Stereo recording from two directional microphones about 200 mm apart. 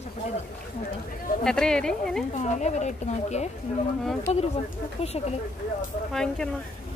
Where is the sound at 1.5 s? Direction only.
5° left (ahead or behind).